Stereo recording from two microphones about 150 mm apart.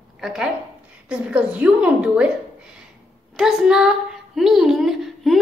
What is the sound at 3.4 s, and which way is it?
A woman's voice, 5° right (ahead or behind).